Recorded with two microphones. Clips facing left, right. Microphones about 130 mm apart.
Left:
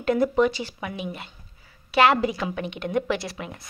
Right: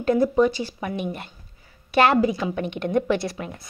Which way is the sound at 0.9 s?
50° right (ahead or behind).